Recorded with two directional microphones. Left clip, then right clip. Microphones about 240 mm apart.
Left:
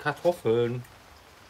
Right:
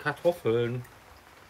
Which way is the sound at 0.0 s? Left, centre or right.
Centre.